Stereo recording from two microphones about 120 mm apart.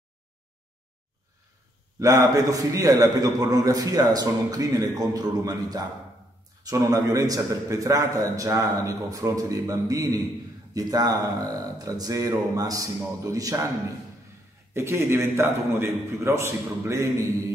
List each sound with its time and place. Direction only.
2.0 s a man's voice: 30° right (ahead or behind)
14.7 s a man's voice: 20° right (ahead or behind)